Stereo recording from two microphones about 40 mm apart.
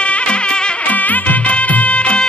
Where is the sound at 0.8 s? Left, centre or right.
Left.